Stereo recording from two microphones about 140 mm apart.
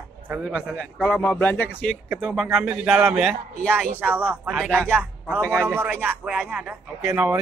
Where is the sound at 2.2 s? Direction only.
Centre (ahead or behind).